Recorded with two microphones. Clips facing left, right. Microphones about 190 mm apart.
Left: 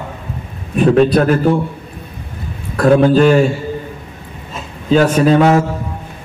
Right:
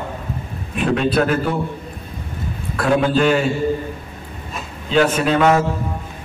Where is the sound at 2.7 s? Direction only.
40° left (ahead or behind).